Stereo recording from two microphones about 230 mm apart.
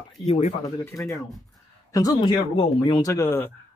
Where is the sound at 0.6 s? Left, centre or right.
Centre.